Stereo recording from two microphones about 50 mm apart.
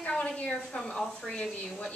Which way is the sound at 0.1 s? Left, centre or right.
Centre.